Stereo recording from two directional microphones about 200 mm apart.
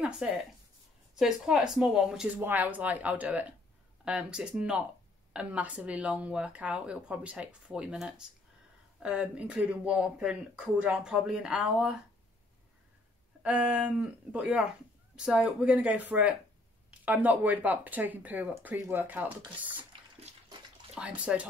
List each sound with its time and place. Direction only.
0.2 s speech: 5° right (ahead or behind)
13.4 s speech: 5° right (ahead or behind)
20.3 s bathtub: 35° right (ahead or behind)
20.9 s speech: 5° right (ahead or behind)